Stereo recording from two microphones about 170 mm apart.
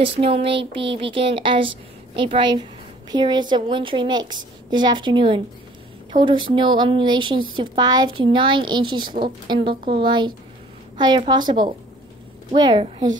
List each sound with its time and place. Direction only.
0.0 s a woman's voice: 35° right (ahead or behind)